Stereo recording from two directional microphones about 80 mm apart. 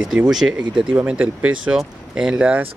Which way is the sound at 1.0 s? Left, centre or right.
Centre.